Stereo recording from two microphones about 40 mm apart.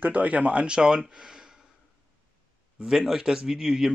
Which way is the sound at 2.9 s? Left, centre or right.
Centre.